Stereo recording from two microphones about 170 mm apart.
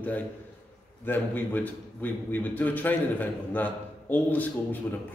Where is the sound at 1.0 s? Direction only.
10° left (ahead or behind).